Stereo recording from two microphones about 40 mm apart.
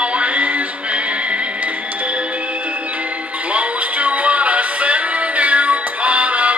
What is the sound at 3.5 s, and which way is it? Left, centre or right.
Music, right.